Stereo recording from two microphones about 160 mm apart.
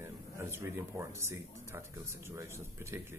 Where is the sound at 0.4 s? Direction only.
15° right (ahead or behind).